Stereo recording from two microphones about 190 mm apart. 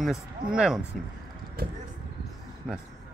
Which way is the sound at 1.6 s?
50° right (ahead or behind).